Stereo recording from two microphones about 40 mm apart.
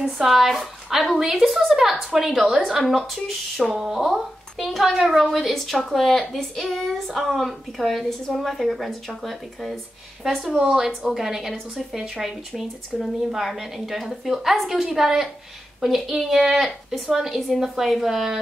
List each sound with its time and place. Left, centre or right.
0.2 s a woman's voice: centre
2.8 s a woman's voice: centre
3.7 s speech: centre
4.6 s a woman's voice: centre
5.5 s a woman's voice: centre
17.6 s speech: centre